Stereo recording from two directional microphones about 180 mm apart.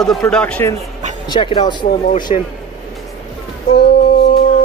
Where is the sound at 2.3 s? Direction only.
35° left (ahead or behind).